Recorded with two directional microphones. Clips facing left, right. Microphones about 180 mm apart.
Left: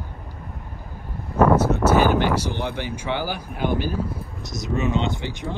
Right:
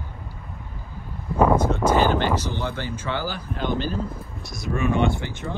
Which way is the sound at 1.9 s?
10° left (ahead or behind).